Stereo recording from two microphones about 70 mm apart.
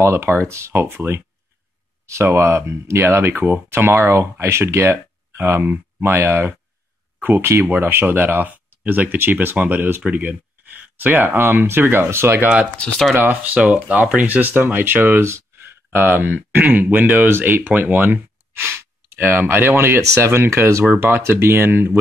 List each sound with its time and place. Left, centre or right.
0.0 s speech: right
5.4 s speech: right
15.2 s a sound: right
16.5 s speech: right